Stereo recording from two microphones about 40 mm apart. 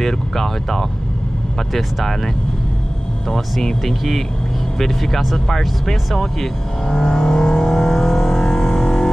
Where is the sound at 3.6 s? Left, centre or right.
Centre.